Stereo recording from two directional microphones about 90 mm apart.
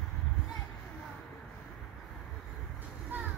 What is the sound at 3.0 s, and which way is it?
Vehicle, 20° right (ahead or behind).